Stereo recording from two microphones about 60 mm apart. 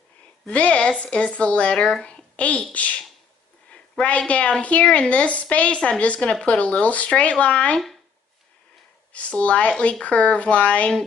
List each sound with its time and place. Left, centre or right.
0.5 s a woman's voice: left
9.1 s a woman's voice: left